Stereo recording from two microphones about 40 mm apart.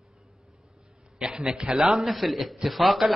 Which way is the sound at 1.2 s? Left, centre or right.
Centre.